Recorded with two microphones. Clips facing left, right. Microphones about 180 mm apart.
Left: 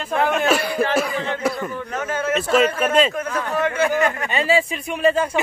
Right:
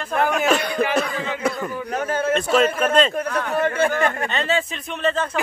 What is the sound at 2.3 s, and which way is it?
Speech, 5° left (ahead or behind).